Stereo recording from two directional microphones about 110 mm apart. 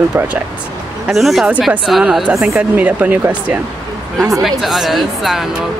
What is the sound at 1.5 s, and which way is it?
Speech, 15° right (ahead or behind).